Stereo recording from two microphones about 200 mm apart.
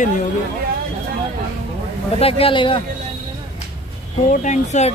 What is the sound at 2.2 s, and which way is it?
Speech, 25° left (ahead or behind).